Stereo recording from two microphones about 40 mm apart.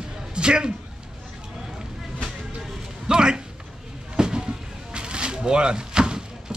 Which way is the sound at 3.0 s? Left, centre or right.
Right.